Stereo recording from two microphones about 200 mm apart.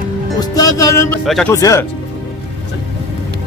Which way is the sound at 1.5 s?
15° left (ahead or behind).